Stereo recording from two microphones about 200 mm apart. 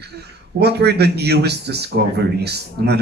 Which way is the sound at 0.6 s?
55° right (ahead or behind).